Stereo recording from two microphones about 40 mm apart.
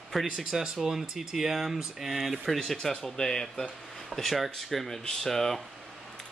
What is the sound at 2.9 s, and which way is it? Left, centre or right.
Speech, centre.